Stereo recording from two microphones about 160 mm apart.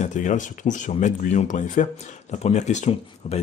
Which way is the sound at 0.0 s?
50° left (ahead or behind).